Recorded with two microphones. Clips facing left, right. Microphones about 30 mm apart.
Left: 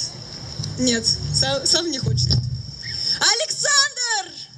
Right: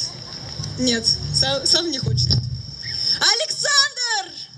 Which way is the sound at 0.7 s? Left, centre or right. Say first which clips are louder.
Even; right.